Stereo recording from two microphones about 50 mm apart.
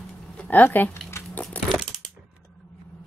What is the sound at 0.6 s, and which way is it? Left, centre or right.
Speech, left.